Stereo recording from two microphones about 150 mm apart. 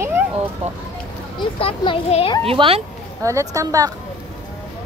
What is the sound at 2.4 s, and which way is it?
Speech, 40° right (ahead or behind).